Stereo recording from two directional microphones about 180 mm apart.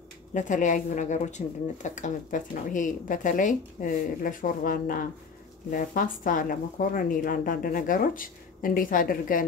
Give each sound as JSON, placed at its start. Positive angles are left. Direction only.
{"t": 0.3, "sound": "speech", "side_deg": 45}